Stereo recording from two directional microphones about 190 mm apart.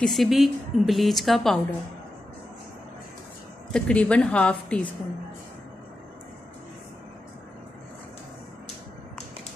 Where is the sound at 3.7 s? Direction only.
5° left (ahead or behind).